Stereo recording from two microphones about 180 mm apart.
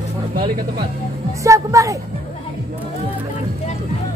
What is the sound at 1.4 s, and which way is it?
Speech, 15° right (ahead or behind).